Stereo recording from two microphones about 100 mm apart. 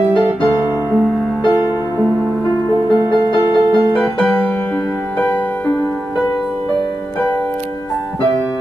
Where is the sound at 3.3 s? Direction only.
35° right (ahead or behind).